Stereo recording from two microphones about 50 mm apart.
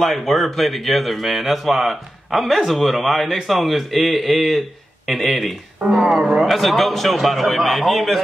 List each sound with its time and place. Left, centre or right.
0.0 s a man's voice: centre
5.9 s speech: centre
6.1 s a man's voice: centre